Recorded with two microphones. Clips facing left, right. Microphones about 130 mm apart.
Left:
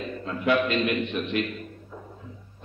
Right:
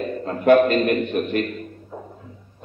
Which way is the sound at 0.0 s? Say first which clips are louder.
Right 7 dB; 45° right (ahead or behind).